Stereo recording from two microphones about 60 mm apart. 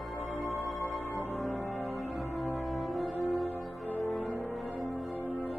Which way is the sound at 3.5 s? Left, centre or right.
Left.